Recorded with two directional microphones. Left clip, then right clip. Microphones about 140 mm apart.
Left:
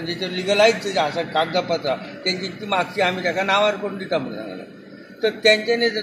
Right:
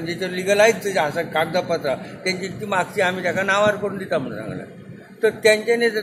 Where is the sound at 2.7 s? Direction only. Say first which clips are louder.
Even; 10° right (ahead or behind).